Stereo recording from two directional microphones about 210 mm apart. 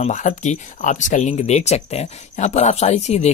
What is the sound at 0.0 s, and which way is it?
Speech, 35° left (ahead or behind).